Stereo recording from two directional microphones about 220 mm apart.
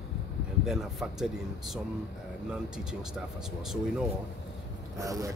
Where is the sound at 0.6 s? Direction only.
Centre (ahead or behind).